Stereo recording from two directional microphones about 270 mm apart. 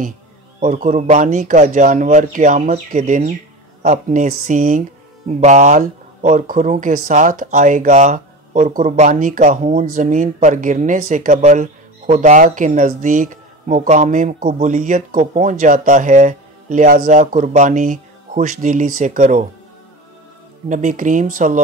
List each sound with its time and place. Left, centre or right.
0.6 s speech: right
20.6 s speech: right